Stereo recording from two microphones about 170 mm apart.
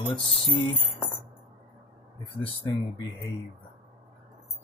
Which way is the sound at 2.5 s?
25° left (ahead or behind).